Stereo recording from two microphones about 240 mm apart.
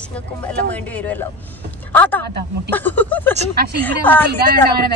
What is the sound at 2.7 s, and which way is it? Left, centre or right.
Speech, centre.